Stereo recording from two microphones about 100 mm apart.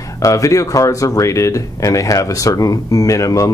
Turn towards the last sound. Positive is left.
turn(degrees=35)  # may be behind; listen again after turning